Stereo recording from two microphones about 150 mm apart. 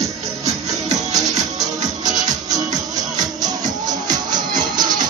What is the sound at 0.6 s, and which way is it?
Music, 25° right (ahead or behind).